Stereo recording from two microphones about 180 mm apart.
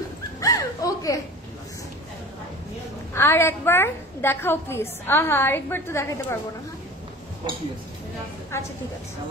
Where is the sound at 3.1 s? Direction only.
15° left (ahead or behind).